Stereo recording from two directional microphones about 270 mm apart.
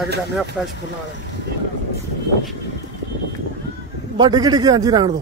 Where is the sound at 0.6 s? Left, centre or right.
Centre.